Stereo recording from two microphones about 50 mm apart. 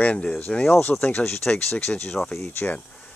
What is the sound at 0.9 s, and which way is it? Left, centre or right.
Speech, left.